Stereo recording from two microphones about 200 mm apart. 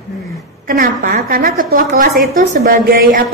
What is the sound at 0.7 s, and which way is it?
A woman's voice, 45° right (ahead or behind).